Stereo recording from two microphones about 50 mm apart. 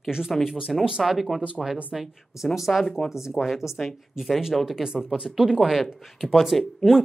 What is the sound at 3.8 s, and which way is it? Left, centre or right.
Speech, centre.